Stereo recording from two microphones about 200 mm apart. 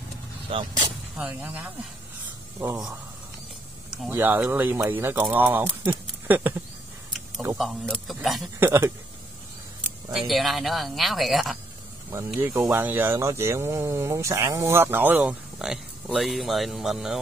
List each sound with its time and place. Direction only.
0.5 s speech: 25° right (ahead or behind)
1.1 s speech: 5° right (ahead or behind)
3.9 s speech: 5° right (ahead or behind)
7.1 s a sound: centre (ahead or behind)
7.5 s speech: centre (ahead or behind)
8.5 s speech: 10° right (ahead or behind)
10.1 s speech: centre (ahead or behind)